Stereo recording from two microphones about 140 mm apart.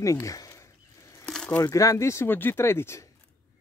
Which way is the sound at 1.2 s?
5° left (ahead or behind).